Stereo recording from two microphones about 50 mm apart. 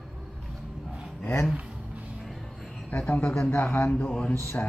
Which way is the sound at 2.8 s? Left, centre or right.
Left.